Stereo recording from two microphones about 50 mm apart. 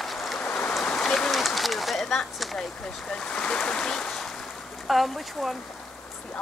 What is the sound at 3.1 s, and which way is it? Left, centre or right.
Speech, centre.